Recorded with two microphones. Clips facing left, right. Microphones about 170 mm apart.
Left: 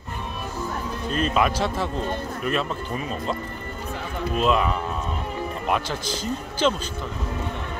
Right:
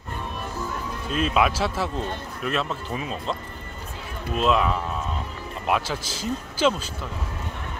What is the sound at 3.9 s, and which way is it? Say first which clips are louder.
Run: left 6 dB; 70° left (ahead or behind).